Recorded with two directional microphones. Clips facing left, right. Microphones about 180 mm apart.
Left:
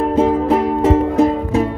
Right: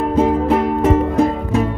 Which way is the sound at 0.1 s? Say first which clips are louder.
Right 1 dB; 30° left (ahead or behind).